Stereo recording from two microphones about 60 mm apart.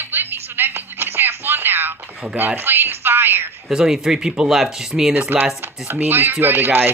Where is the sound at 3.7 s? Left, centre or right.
Centre.